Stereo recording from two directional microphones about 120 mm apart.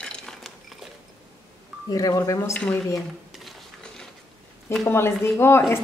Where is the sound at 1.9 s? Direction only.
30° left (ahead or behind).